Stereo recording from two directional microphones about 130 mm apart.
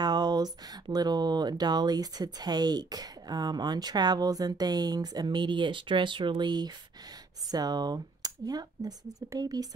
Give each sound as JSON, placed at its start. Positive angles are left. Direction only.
{"t": 0.0, "sound": "speech", "side_deg": -30}